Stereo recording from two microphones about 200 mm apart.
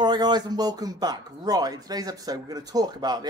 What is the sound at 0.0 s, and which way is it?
Speech, 20° right (ahead or behind).